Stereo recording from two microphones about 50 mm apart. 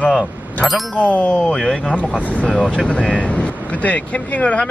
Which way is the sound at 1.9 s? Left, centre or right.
Left.